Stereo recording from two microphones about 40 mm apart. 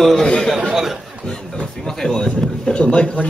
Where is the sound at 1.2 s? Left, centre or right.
Centre.